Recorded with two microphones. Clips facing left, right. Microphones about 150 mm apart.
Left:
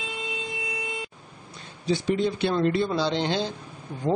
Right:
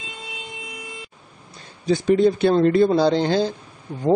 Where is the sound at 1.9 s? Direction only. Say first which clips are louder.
Right 7 dB; 45° right (ahead or behind).